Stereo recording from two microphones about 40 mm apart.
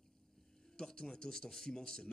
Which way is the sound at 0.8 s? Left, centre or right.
Centre.